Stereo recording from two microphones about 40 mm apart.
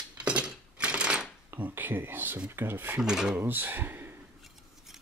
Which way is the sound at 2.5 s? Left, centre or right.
Right.